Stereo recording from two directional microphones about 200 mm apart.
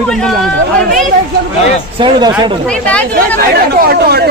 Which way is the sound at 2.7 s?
5° left (ahead or behind).